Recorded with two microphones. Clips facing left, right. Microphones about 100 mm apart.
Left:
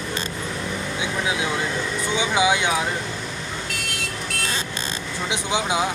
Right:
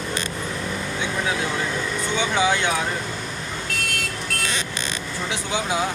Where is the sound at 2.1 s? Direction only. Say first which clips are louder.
Left 1 dB; 10° left (ahead or behind).